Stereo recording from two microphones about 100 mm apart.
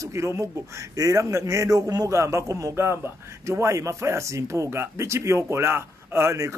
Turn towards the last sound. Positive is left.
turn(degrees=-30)  # may be behind; listen again after turning